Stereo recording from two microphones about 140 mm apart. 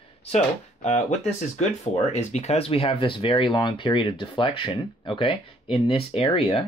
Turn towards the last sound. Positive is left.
turn(degrees=40)  # may be behind; listen again after turning